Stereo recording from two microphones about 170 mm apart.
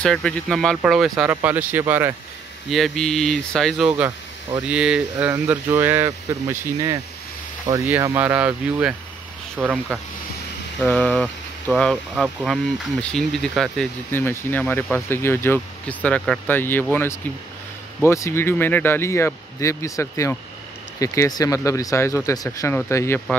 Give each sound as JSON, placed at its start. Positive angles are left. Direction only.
{"t": 0.0, "sound": "speech", "side_deg": 5}
{"t": 2.7, "sound": "speech", "side_deg": 0}
{"t": 10.8, "sound": "speech", "side_deg": 5}